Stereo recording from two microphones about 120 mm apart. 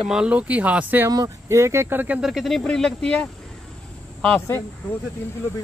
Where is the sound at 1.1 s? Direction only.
30° right (ahead or behind).